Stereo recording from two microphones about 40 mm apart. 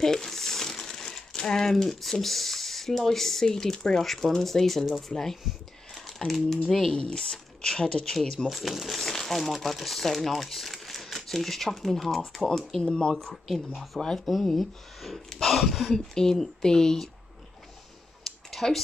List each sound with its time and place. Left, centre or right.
0.0 s speech: centre
5.9 s a sound: centre
6.7 s speech: centre
7.1 s speech: centre
8.5 s speech: centre
8.9 s speech: centre
12.8 s speech: centre
13.5 s speech: centre
14.0 s speech: centre
15.2 s speech: centre
15.7 s speech: centre
16.2 s speech: centre
18.2 s a sound: centre